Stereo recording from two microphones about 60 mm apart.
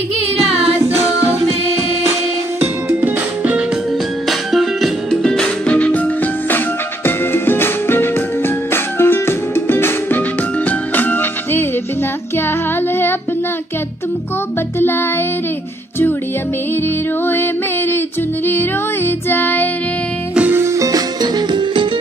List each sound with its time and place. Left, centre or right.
2.6 s music: right
4.3 s music: centre
5.1 s music: centre
5.7 s music: left
7.1 s music: left
14.8 s music: left
17.3 s music: left
20.5 s music: right